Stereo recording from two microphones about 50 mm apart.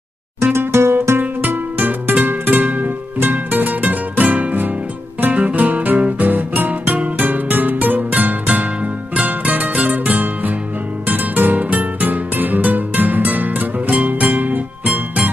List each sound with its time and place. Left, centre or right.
0.4 s music: right
1.5 s music: right
9.8 s music: right